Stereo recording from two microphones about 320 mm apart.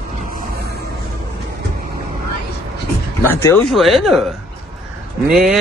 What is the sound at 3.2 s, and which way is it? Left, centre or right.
Speech, centre.